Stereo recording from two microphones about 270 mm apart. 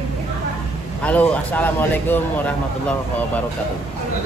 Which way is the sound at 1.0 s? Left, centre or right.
Centre.